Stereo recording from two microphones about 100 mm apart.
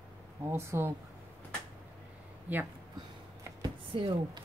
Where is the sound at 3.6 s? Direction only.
60° right (ahead or behind).